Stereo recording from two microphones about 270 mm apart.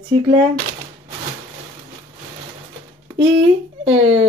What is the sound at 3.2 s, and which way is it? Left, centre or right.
Speech, centre.